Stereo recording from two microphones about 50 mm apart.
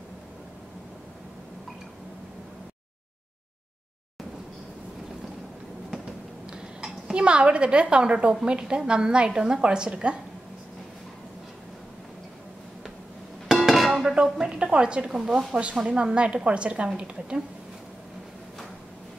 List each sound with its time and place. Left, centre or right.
6.5 s a woman's voice: centre
13.5 s dishes: centre
14.1 s a sound: centre
15.0 s a woman's voice: centre
15.5 s a woman's voice: right